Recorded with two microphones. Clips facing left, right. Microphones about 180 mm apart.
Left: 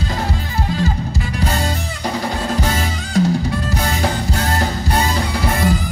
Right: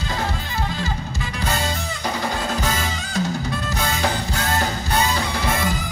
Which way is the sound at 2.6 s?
30° left (ahead or behind).